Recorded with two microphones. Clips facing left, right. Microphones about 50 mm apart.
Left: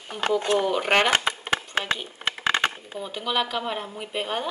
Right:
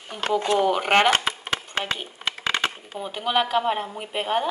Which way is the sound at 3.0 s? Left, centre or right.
Centre.